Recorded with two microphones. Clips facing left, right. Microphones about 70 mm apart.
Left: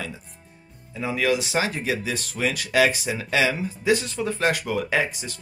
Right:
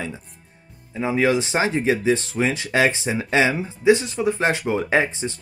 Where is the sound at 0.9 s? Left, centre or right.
Right.